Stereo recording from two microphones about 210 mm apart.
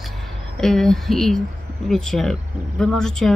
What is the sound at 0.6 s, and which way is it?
Speech, centre (ahead or behind).